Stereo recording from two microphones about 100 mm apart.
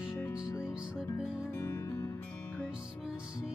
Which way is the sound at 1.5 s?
25° left (ahead or behind).